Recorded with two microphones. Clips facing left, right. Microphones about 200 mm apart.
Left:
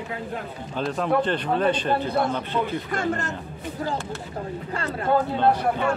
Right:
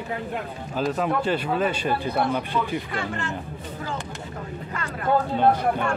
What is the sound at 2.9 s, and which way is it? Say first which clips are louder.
Speech: left 3 dB; 40° left (ahead or behind).